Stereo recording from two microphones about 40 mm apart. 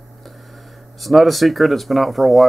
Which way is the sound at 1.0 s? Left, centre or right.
Centre.